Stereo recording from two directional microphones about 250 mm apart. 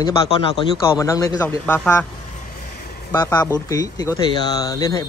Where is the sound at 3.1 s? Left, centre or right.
Centre.